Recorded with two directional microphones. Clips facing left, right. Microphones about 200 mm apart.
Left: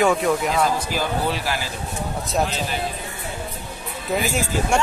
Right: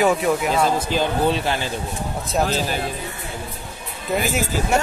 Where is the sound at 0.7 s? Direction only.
25° right (ahead or behind).